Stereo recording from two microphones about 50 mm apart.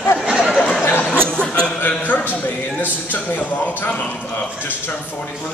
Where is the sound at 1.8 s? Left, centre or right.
Left.